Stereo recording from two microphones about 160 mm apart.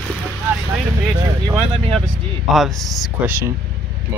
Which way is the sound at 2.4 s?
Centre (ahead or behind).